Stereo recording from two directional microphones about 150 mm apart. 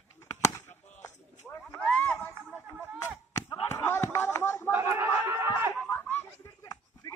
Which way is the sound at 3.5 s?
15° left (ahead or behind).